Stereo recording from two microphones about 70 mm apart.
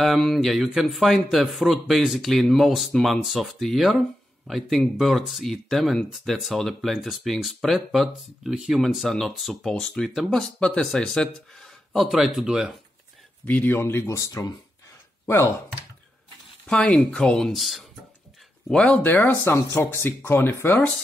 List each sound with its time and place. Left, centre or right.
0.0 s speech: centre
11.9 s speech: centre
13.5 s speech: left
13.7 s speech: left
14.1 s speech: left
15.2 s speech: left
16.6 s speech: centre
18.7 s speech: centre
19.0 s speech: left
19.5 s speech: left